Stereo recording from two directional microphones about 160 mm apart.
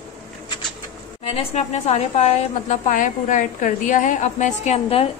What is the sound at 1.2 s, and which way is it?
A woman's voice, 40° left (ahead or behind).